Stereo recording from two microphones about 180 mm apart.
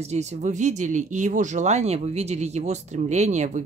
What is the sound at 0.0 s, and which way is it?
Speech, 40° right (ahead or behind).